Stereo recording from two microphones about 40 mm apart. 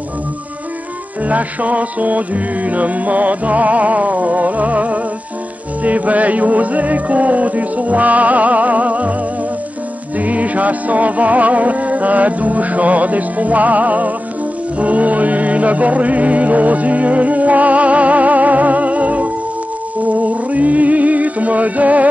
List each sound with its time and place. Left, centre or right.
1.2 s music: right
10.1 s music: right